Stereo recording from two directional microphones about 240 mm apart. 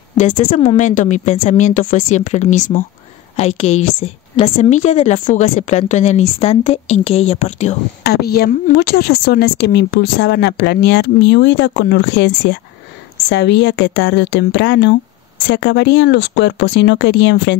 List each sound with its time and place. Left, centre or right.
0.2 s a woman's voice: left
8.0 s speech: left